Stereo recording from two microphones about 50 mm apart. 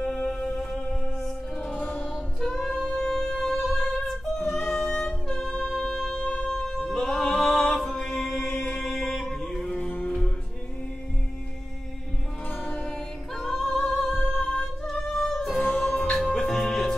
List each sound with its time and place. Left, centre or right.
0.0 s music: centre
2.4 s a capella: centre
2.8 s music: centre
4.6 s music: left
4.9 s music: centre
9.8 s music: left
12.6 s music: left
13.4 s singing: centre
14.5 s music: centre
15.6 s music: left
16.3 s music: centre